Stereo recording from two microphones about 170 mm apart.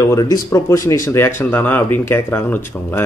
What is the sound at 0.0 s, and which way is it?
Speech, 20° left (ahead or behind).